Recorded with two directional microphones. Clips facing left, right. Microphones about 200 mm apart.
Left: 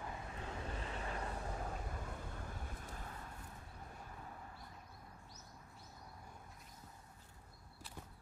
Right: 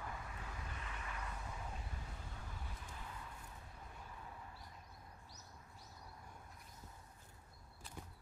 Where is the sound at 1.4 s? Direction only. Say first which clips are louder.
Left 5 dB; 50° left (ahead or behind).